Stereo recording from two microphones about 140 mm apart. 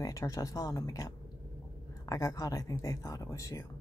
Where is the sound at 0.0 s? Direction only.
25° left (ahead or behind).